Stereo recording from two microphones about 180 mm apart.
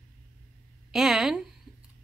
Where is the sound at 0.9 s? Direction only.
5° right (ahead or behind).